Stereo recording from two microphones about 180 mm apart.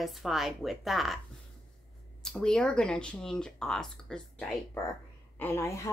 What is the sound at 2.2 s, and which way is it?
A woman's voice, 5° left (ahead or behind).